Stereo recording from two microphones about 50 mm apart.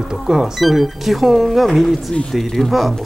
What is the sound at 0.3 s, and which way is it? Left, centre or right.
Speech, centre.